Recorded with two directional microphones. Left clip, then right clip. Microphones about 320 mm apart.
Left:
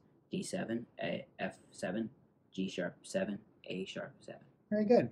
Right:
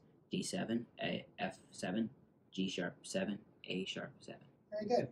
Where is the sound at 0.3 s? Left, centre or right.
Centre.